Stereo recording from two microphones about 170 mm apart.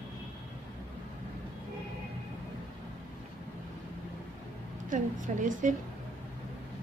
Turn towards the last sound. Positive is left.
turn(degrees=-50)  # may be behind; listen again after turning